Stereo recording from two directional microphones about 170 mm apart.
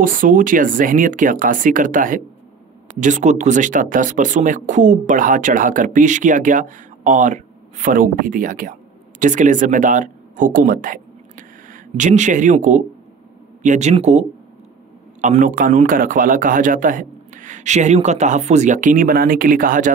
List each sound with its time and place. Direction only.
0.0 s speech: 55° right (ahead or behind)